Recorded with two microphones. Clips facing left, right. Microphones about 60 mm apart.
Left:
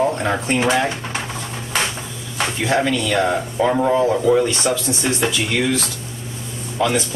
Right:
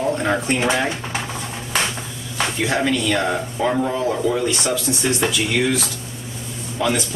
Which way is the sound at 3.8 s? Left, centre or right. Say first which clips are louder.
Left 4 dB; centre.